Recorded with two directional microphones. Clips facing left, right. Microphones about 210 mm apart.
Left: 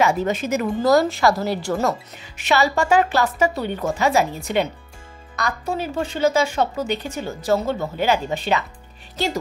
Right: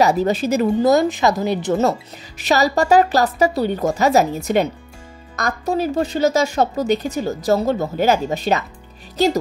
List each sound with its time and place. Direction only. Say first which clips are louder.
0.0 s a woman's voice: right 4 dB; 35° right (ahead or behind)
0.7 s a woman's voice: left 1 dB; 20° right (ahead or behind); by 8.6 s 40° right (ahead or behind)